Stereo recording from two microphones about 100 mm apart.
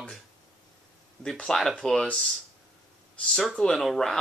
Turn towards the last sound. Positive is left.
turn(degrees=0)  # may be behind; listen again after turning